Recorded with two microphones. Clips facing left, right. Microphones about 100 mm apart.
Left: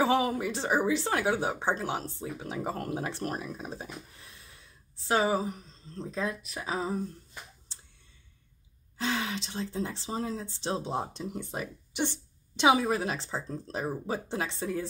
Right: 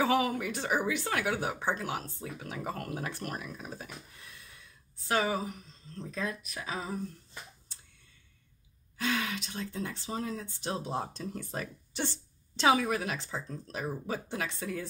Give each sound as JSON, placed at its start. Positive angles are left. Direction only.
{"t": 0.0, "sound": "speech", "side_deg": 30}
{"t": 8.9, "sound": "speech", "side_deg": 25}
{"t": 12.8, "sound": "speech", "side_deg": 30}